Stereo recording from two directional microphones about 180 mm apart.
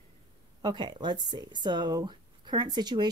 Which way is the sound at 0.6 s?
25° right (ahead or behind).